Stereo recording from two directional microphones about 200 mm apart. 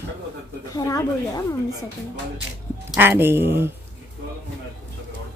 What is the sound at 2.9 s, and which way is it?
Speech, 10° right (ahead or behind).